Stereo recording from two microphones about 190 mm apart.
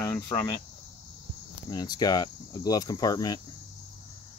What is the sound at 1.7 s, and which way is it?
Speech, 20° left (ahead or behind).